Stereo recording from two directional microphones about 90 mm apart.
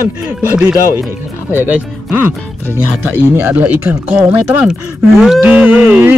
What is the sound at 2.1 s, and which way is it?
Speech, 20° right (ahead or behind).